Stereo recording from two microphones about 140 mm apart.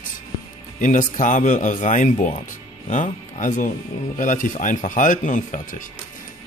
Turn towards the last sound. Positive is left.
turn(degrees=65)  # may be behind; listen again after turning